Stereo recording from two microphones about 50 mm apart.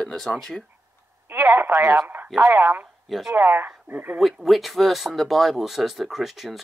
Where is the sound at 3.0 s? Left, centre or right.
Centre.